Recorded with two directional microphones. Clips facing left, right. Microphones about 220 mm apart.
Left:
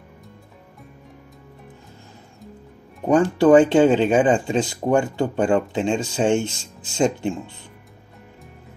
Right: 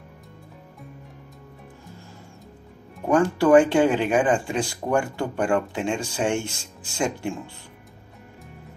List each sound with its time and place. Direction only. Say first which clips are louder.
3.1 s speech: left 3 dB; 20° left (ahead or behind)